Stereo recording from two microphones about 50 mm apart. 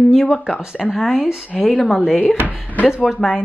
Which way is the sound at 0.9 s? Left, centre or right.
Centre.